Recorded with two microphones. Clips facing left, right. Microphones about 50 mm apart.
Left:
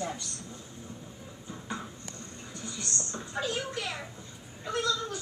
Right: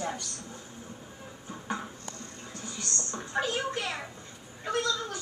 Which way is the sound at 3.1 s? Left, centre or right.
Right.